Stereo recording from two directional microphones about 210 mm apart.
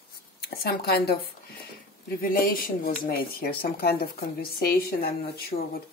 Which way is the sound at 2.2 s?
45° left (ahead or behind).